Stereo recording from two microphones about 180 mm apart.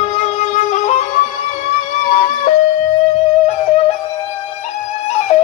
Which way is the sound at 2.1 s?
45° left (ahead or behind).